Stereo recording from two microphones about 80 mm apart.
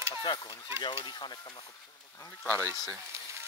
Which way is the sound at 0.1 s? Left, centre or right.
Left.